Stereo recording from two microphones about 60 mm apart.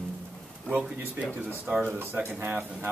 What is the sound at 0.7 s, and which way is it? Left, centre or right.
Speech, centre.